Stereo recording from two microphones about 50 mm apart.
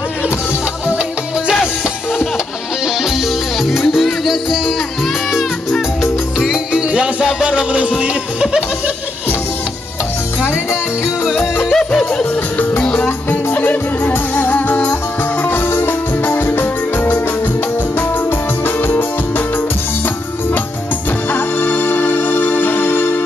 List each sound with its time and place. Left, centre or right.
3.0 s music: centre
6.3 s music: centre
6.7 s music: right
11.7 s yodeling: centre
12.9 s music: left
18.8 s music: left
21.3 s music: left